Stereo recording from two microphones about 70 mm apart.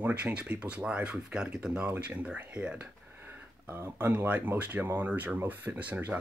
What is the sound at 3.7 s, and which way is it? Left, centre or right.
Speech, right.